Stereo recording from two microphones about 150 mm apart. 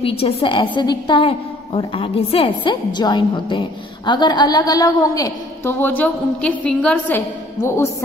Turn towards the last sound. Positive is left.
turn(degrees=15)  # may be behind; listen again after turning